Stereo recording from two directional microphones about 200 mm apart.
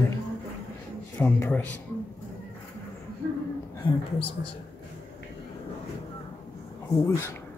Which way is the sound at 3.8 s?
25° left (ahead or behind).